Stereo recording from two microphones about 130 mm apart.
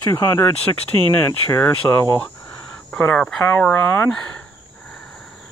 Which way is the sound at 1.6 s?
20° left (ahead or behind).